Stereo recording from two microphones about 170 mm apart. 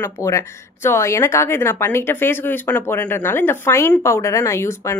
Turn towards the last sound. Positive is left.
turn(degrees=15)  # may be behind; listen again after turning